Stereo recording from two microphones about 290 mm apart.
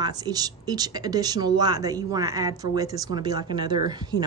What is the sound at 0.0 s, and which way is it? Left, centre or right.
A woman's voice, centre.